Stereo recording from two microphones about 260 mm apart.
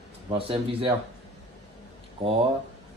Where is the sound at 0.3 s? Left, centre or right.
Right.